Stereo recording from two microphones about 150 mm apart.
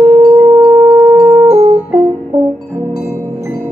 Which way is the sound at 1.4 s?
45° right (ahead or behind).